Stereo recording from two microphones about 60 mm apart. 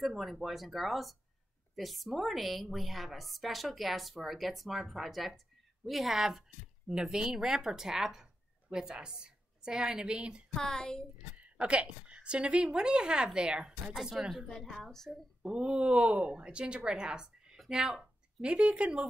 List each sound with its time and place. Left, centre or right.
0.0 s a woman's voice: centre
10.5 s speech: centre
11.3 s a woman's voice: right
13.9 s a woman's voice: centre
15.0 s a woman's voice: centre